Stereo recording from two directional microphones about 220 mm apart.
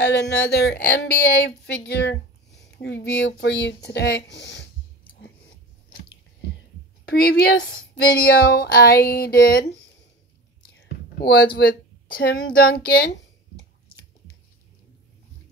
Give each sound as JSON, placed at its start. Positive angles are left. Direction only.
{"t": 0.0, "sound": "speech", "side_deg": 50}
{"t": 7.1, "sound": "speech", "side_deg": 45}
{"t": 11.1, "sound": "a sound", "side_deg": 45}